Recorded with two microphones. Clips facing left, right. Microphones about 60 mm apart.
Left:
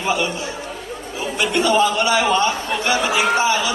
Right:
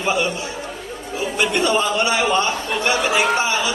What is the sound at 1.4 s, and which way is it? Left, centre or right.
Speech, right.